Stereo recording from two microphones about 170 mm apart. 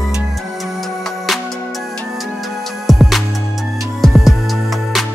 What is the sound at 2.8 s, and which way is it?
Music, centre (ahead or behind).